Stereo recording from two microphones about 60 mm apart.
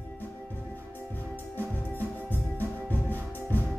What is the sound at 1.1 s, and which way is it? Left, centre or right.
Music, left.